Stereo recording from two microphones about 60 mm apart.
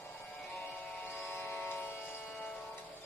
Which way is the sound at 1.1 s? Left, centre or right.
Left.